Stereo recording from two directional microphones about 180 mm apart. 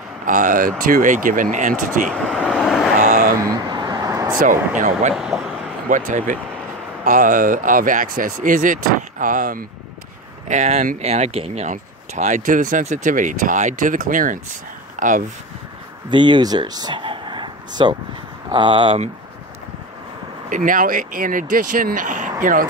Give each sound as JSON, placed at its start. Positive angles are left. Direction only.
{"t": 0.2, "sound": "speech", "side_deg": -50}
{"t": 2.0, "sound": "vehicle", "side_deg": 0}
{"t": 3.0, "sound": "vehicle", "side_deg": -45}
{"t": 3.3, "sound": "a sound", "side_deg": -20}
{"t": 4.4, "sound": "speech", "side_deg": -50}
{"t": 5.1, "sound": "speech", "side_deg": -5}
{"t": 5.9, "sound": "speech", "side_deg": -45}
{"t": 16.1, "sound": "speech", "side_deg": -25}
{"t": 20.4, "sound": "speech", "side_deg": -50}